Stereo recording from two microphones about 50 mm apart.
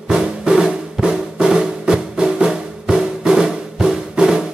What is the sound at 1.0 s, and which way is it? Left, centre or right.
Music, centre.